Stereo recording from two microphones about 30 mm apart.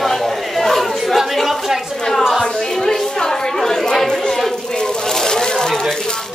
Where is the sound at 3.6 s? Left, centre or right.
Centre.